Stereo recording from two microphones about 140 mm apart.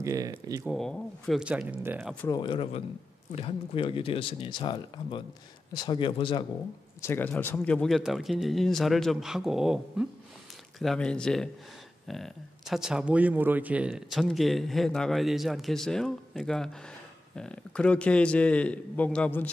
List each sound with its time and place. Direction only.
0.0 s speech: 25° right (ahead or behind)
0.7 s speech: 5° left (ahead or behind); by 2.0 s 15° right (ahead or behind)
2.2 s speech: 30° left (ahead or behind)
7.0 s a man's voice: 15° left (ahead or behind)